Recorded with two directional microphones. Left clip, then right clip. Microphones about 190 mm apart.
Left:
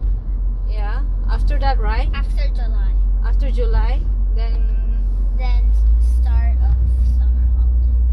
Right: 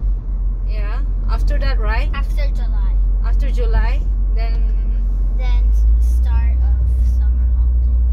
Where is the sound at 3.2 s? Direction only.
15° right (ahead or behind).